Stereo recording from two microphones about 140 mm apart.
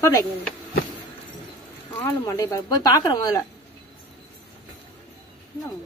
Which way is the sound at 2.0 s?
20° left (ahead or behind).